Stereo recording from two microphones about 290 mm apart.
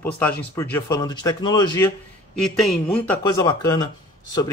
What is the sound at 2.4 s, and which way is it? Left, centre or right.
Speech, centre.